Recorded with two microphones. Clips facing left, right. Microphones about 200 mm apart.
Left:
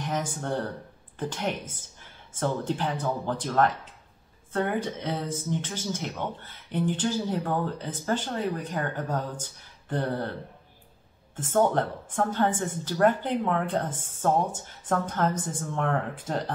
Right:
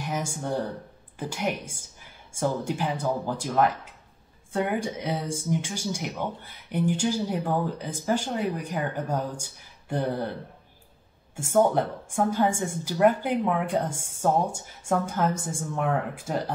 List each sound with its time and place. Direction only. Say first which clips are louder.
0.0 s speech: even; 10° right (ahead or behind)
11.3 s speech: right 2 dB; 10° right (ahead or behind)